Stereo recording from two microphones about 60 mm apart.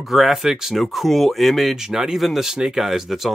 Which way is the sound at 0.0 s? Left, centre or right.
Centre.